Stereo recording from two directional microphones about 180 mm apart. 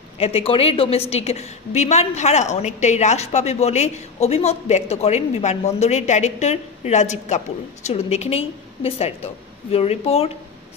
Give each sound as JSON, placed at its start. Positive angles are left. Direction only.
{"t": 0.2, "sound": "a woman's voice", "side_deg": 30}